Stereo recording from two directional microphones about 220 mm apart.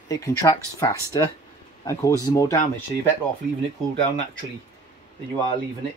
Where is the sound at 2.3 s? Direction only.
15° left (ahead or behind).